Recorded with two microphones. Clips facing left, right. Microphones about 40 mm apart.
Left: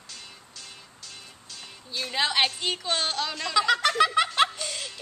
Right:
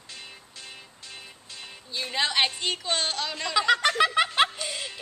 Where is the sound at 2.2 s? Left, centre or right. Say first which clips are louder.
Even; centre.